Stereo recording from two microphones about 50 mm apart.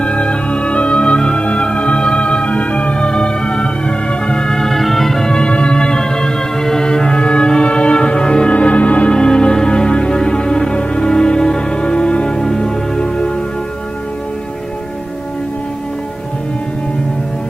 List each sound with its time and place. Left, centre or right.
0.0 s music: left